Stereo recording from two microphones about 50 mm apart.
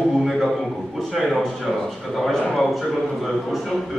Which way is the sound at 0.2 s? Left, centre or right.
Centre.